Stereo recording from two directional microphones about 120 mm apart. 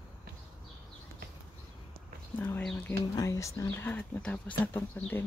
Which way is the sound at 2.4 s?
15° left (ahead or behind).